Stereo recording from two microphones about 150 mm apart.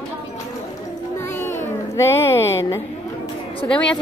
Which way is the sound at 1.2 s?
15° left (ahead or behind).